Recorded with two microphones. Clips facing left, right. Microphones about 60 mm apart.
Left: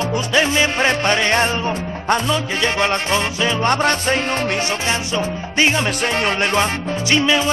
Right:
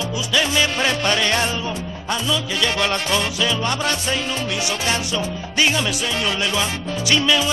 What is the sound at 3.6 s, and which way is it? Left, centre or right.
Music, left.